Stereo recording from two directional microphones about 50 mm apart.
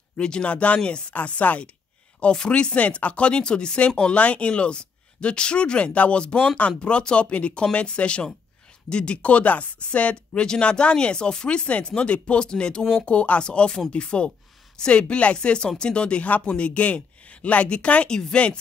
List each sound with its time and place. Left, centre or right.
0.2 s speech: left
18.1 s speech: centre